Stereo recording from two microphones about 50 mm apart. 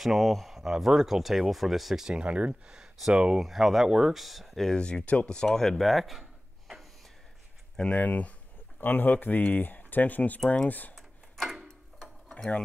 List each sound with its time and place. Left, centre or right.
0.0 s speech: centre
2.1 s speech: right
3.3 s speech: centre
4.6 s speech: centre
7.9 s speech: left
11.0 s a sound: centre